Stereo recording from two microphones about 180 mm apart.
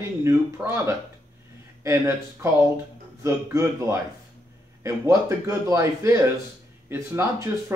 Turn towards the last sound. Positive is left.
turn(degrees=-15)  # may be behind; listen again after turning